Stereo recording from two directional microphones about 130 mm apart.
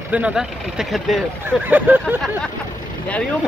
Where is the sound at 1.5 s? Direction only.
15° right (ahead or behind).